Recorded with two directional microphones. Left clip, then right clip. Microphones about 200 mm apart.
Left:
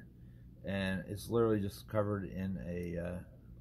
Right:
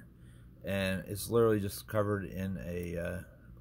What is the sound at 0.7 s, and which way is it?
Speech, 20° right (ahead or behind).